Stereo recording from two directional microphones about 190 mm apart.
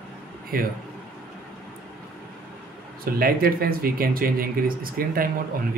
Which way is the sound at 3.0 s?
50° right (ahead or behind).